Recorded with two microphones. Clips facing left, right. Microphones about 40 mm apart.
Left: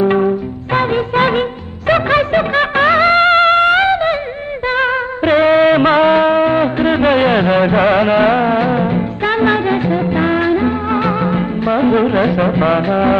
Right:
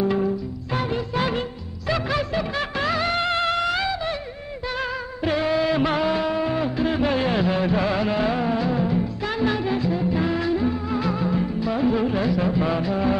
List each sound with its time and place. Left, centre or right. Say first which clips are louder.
0.0 s music: left 9 dB; left